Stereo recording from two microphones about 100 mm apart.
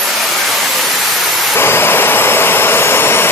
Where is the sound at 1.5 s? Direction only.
25° left (ahead or behind).